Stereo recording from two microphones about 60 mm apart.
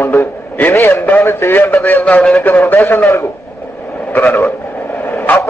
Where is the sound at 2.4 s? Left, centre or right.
Left.